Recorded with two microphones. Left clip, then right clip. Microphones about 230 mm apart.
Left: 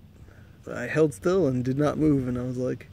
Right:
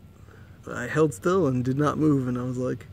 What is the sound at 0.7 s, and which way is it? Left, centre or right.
Speech, centre.